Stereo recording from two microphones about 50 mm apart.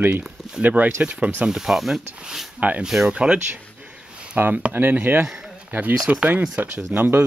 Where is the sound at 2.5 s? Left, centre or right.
Right.